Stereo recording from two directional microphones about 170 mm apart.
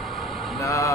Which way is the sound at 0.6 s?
20° left (ahead or behind).